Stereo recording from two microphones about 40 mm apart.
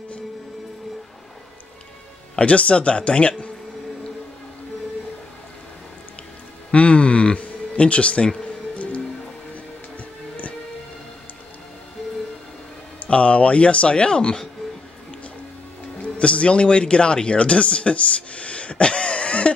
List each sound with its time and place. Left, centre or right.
2.3 s speech: left
6.7 s a sound: left
13.0 s speech: left
16.0 s speech: left